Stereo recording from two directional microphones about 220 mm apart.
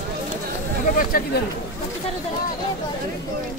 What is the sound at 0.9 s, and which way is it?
Speech, 40° left (ahead or behind).